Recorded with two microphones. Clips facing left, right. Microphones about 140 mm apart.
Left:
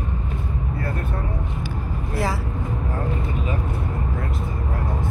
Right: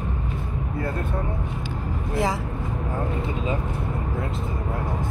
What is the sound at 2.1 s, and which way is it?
Vehicle, 20° right (ahead or behind).